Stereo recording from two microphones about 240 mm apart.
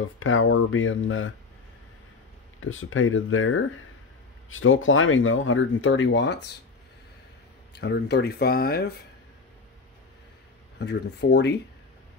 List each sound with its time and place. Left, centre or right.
0.0 s speech: left
2.6 s speech: left
7.7 s speech: left
10.8 s speech: left